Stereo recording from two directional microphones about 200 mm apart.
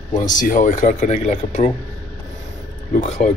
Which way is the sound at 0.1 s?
40° left (ahead or behind).